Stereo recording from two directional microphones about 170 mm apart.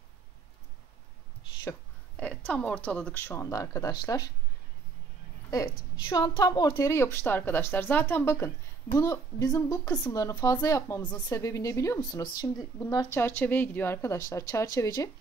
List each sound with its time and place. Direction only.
2.1 s a woman's voice: 10° left (ahead or behind); by 4.3 s 25° left (ahead or behind)
5.5 s a woman's voice: 20° left (ahead or behind)